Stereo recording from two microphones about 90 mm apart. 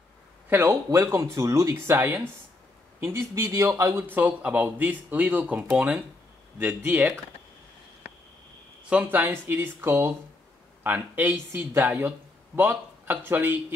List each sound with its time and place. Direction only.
0.5 s speech: 25° right (ahead or behind)
8.8 s speech: 15° right (ahead or behind)